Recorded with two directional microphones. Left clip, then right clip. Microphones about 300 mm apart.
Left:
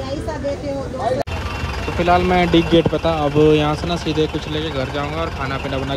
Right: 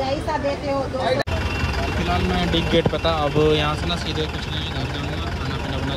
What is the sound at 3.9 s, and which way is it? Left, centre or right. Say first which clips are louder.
Speech: left 6 dB; centre.